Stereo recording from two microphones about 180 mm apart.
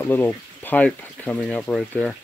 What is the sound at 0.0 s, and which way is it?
Speech, 10° left (ahead or behind).